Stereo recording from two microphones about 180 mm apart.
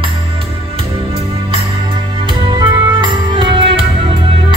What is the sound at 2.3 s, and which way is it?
Music, 25° right (ahead or behind).